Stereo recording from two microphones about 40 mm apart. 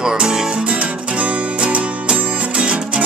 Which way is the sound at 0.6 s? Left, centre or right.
Right.